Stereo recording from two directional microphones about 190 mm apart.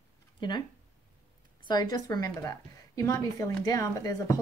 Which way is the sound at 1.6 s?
20° left (ahead or behind).